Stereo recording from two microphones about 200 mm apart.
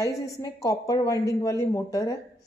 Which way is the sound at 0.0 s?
15° left (ahead or behind).